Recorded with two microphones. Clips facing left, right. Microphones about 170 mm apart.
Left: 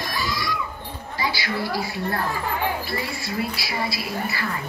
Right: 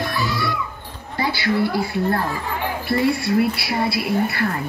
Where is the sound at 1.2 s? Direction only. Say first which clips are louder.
Right 7 dB; 55° right (ahead or behind).